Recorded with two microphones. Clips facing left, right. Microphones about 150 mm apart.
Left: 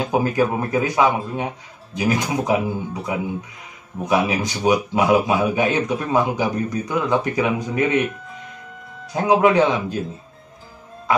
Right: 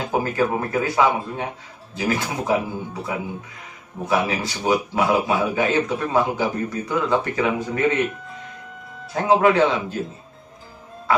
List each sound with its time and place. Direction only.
0.1 s a man's voice: 15° left (ahead or behind)
9.1 s a man's voice: 15° left (ahead or behind)